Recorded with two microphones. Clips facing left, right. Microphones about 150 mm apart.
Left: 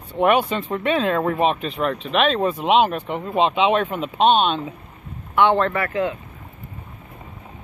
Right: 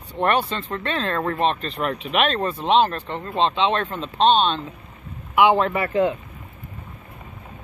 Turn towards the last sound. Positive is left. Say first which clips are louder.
# right 2 dB
turn(degrees=-30)  # may be behind; listen again after turning